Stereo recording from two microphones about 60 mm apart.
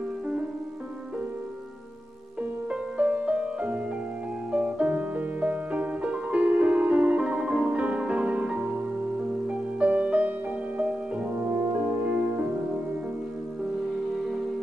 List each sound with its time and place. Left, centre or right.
2.7 s music: right